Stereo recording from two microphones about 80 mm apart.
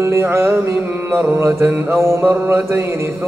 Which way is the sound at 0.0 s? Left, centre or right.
Right.